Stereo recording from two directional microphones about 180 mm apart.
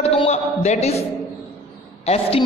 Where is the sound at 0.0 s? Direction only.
35° left (ahead or behind).